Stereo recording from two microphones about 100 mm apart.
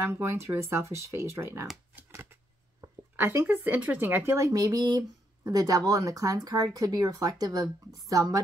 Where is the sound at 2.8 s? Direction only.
25° right (ahead or behind).